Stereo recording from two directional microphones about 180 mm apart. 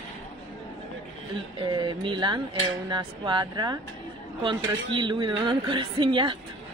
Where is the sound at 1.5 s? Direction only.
25° right (ahead or behind).